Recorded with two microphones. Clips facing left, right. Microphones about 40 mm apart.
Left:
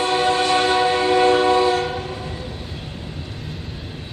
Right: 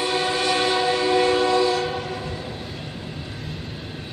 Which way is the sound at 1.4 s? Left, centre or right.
Left.